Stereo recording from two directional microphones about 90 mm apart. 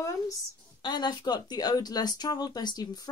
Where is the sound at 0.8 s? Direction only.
55° left (ahead or behind).